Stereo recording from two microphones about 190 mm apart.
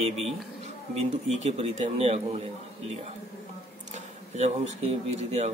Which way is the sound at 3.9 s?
35° right (ahead or behind).